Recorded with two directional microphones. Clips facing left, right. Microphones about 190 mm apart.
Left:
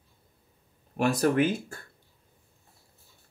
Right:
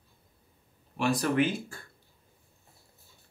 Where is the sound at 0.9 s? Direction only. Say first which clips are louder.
Left 3 dB; 45° left (ahead or behind).